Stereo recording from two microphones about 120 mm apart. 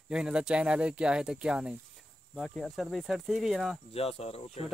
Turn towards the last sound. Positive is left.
turn(degrees=60)  # may be behind; listen again after turning